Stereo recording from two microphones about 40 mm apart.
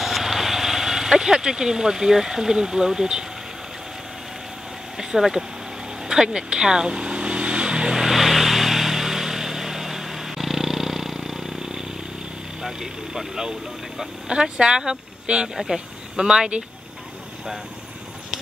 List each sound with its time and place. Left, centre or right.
0.0 s speech: centre
4.9 s speech: centre
6.0 s vehicle: centre
7.9 s vehicle: centre
12.6 s speech: centre
15.5 s speech: centre